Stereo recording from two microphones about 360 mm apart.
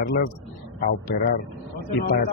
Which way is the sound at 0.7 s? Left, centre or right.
Left.